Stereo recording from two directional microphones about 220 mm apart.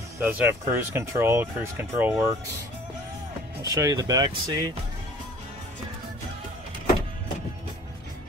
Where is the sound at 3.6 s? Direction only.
15° right (ahead or behind).